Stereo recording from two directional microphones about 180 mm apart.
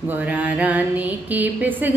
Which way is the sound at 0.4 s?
10° right (ahead or behind).